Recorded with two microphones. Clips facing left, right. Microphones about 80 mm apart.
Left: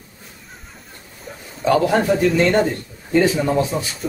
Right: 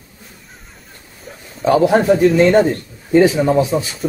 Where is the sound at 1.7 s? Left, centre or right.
Centre.